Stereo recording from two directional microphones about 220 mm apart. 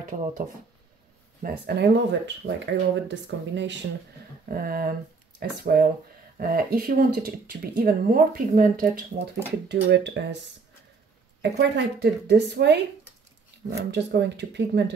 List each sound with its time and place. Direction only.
1.4 s speech: 50° right (ahead or behind)
4.5 s speech: 40° right (ahead or behind)
11.5 s speech: 50° right (ahead or behind)
13.7 s speech: 50° right (ahead or behind)